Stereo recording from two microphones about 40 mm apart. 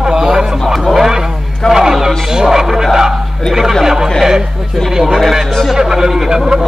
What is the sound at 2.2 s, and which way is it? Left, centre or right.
Music, centre.